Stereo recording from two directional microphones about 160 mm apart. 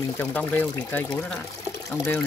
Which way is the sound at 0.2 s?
10° left (ahead or behind).